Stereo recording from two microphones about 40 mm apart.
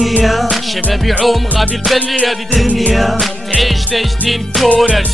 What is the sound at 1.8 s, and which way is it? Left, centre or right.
Music, centre.